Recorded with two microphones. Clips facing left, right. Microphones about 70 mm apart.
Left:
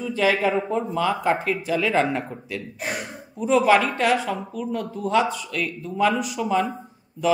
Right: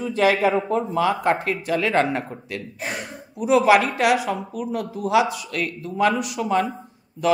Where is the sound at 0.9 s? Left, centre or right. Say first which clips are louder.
Right 1 dB; centre.